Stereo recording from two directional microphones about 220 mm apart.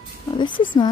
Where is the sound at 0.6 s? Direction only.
20° left (ahead or behind).